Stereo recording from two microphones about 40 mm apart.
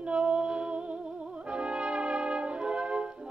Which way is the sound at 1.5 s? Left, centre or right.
Right.